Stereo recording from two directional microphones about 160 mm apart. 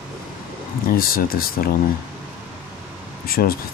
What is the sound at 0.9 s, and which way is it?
Speech, 65° left (ahead or behind).